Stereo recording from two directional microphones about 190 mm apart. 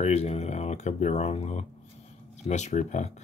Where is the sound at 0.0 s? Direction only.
35° left (ahead or behind).